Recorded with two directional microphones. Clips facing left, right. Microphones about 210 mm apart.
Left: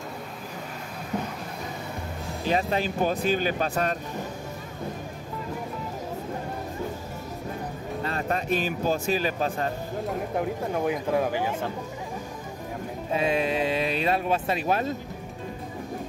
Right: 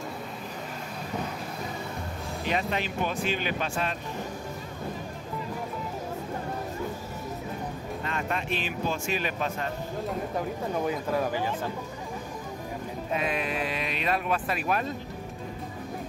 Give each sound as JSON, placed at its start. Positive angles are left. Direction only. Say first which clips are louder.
{"t": 2.4, "sound": "speech", "louder": "left 4 dB", "side_deg": 35}
{"t": 8.0, "sound": "speech", "louder": "left 4 dB", "side_deg": 35}
{"t": 10.9, "sound": "speech", "louder": "left 5 dB", "side_deg": 15}
{"t": 13.1, "sound": "speech", "louder": "left 5 dB", "side_deg": 30}